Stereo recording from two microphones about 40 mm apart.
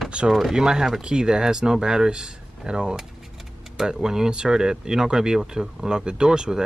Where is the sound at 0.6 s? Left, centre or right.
Centre.